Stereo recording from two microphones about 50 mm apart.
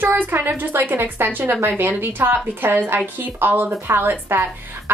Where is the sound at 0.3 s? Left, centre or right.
Right.